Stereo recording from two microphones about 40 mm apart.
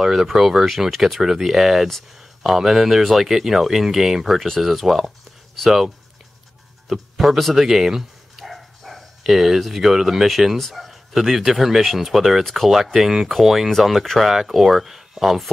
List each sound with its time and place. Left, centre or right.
0.0 s speech: centre
6.9 s speech: centre
8.5 s bow-wow: centre
10.2 s speech: centre
14.3 s speech: centre